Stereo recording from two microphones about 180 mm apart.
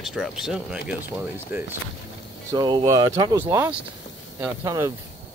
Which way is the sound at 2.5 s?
25° right (ahead or behind).